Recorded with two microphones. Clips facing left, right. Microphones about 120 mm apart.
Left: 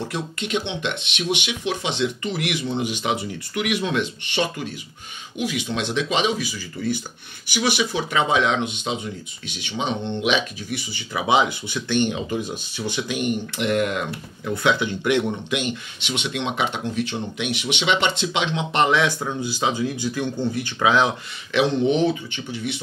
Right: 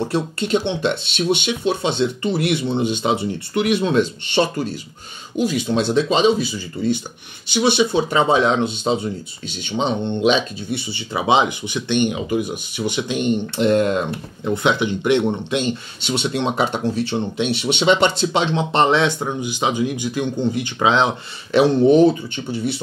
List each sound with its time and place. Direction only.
0.0 s speech: 35° right (ahead or behind)
21.5 s speech: 40° right (ahead or behind)